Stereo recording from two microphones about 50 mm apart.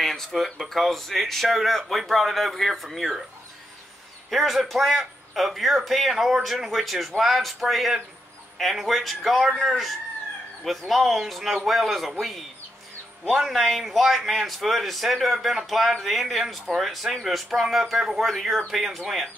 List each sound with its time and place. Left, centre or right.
0.0 s a man's voice: centre
4.3 s a man's voice: centre
13.4 s a man's voice: centre